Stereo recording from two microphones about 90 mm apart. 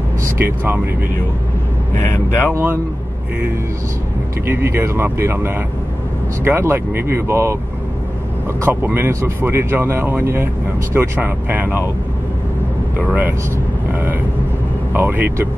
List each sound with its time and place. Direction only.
0.2 s speech: 25° right (ahead or behind)
2.0 s speech: 20° left (ahead or behind)
2.5 s speech: 25° right (ahead or behind)
4.5 s speech: 25° right (ahead or behind)
8.5 s speech: 25° right (ahead or behind)
14.9 s speech: 20° right (ahead or behind)